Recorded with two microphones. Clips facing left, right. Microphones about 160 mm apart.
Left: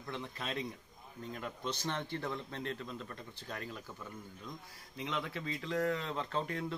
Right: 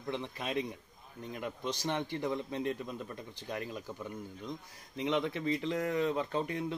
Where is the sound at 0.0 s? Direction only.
20° right (ahead or behind).